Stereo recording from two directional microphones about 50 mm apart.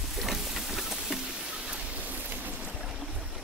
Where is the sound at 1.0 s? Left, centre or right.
Centre.